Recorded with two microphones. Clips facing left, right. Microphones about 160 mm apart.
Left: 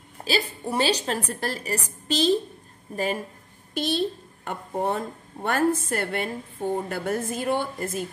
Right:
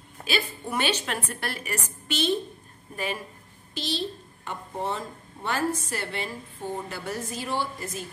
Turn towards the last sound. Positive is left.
turn(degrees=55)  # may be behind; listen again after turning